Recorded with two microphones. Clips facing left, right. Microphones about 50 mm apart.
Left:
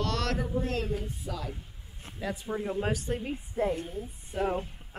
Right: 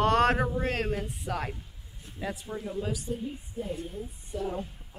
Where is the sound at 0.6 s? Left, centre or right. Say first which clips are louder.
Right 2 dB; right.